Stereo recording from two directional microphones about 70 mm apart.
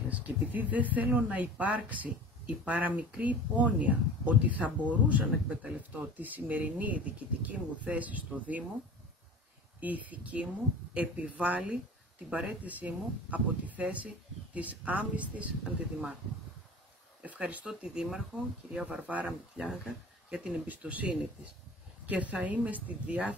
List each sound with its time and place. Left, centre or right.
0.1 s speech: right
9.8 s speech: right
17.2 s speech: right
17.6 s speech: centre